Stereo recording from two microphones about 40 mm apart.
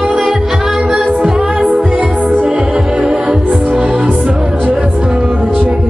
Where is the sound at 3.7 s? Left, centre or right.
Right.